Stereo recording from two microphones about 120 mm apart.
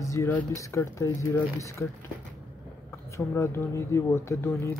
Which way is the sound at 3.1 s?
25° left (ahead or behind).